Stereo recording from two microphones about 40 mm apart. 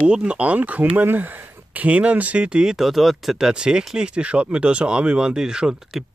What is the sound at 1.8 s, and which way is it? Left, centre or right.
Speech, right.